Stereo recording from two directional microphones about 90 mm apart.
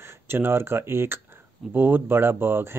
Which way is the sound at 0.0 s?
25° right (ahead or behind).